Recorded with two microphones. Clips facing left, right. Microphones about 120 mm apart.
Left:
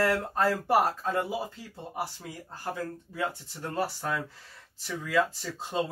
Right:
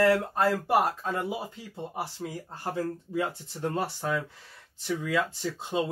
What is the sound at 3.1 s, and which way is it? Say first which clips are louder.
Speech: right 1 dB; 20° right (ahead or behind).